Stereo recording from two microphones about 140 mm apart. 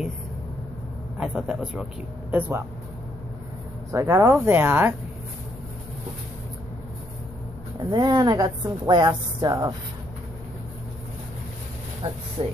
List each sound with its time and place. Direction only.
1.1 s a man's voice: 5° right (ahead or behind)
3.9 s speech: 20° right (ahead or behind)
7.9 s a woman's voice: 30° right (ahead or behind)
12.0 s speech: 35° right (ahead or behind)